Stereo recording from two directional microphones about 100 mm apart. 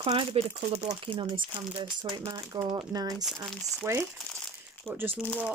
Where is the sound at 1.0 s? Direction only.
55° right (ahead or behind); by 3.3 s 40° right (ahead or behind).